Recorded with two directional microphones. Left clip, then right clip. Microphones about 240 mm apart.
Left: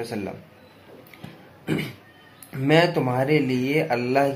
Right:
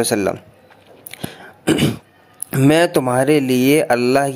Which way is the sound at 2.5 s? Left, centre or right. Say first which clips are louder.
Right 5 dB; right.